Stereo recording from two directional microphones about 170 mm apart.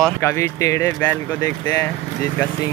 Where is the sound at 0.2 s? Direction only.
15° left (ahead or behind).